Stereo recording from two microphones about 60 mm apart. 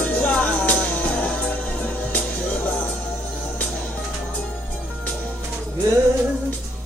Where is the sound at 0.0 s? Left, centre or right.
Left.